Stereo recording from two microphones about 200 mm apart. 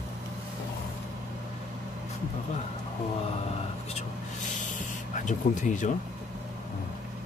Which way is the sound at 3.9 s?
40° left (ahead or behind).